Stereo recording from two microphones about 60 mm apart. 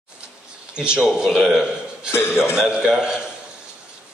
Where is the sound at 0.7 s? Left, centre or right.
Centre.